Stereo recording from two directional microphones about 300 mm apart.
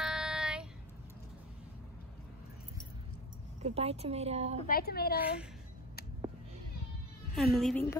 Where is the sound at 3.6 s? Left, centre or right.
Centre.